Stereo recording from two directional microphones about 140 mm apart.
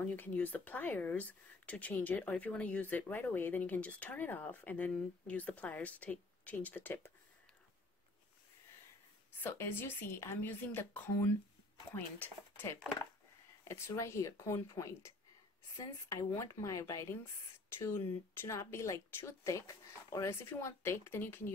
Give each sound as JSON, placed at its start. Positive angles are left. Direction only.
{"t": 0.0, "sound": "speech", "side_deg": 10}
{"t": 9.4, "sound": "speech", "side_deg": 15}